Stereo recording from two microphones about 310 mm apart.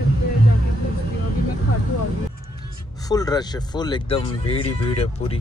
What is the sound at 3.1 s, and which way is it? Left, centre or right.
Speech, centre.